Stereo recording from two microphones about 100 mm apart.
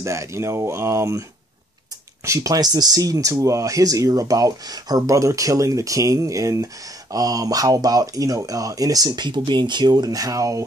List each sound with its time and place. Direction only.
0.0 s speech: 30° right (ahead or behind)
2.2 s speech: 35° right (ahead or behind)